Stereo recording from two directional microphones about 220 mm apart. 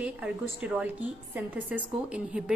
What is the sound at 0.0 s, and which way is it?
A woman's voice, 5° right (ahead or behind).